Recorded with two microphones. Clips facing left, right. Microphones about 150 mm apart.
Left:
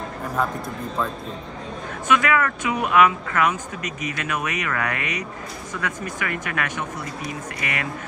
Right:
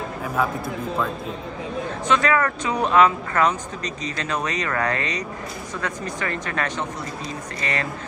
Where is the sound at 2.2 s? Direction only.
35° right (ahead or behind).